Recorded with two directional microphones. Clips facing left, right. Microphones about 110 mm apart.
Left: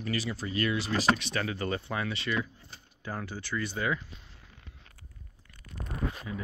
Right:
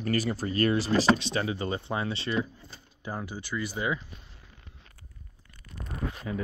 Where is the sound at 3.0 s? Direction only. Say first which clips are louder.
Right 1 dB; 15° right (ahead or behind).